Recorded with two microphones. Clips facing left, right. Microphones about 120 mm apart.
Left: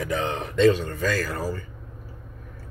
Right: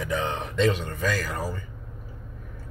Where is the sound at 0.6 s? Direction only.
15° right (ahead or behind).